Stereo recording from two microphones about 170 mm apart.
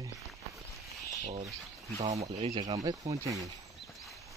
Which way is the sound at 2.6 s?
20° right (ahead or behind).